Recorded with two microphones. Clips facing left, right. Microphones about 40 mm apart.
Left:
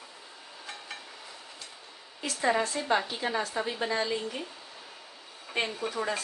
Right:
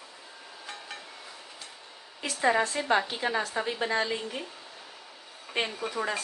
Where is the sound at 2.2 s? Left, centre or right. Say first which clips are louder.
Right 2 dB; centre.